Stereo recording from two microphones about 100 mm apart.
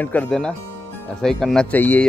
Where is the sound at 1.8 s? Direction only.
20° left (ahead or behind).